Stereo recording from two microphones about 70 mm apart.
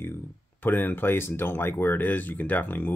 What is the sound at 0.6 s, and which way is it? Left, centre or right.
Speech, left.